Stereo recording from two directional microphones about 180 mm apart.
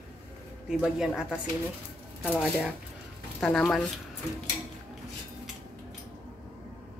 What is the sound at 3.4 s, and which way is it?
Speech, 5° left (ahead or behind).